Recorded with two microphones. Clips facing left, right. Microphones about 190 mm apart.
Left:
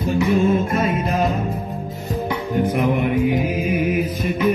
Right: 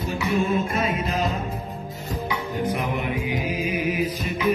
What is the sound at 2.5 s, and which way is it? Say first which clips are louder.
Music: left 8 dB; 55° left (ahead or behind).